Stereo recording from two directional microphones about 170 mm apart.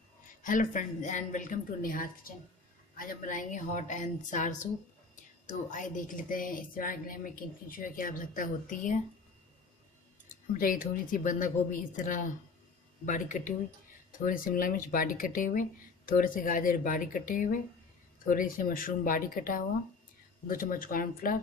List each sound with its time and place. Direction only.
0.4 s a woman's voice: 50° left (ahead or behind)
5.7 s a woman's voice: 50° left (ahead or behind)
10.5 s a woman's voice: 55° left (ahead or behind)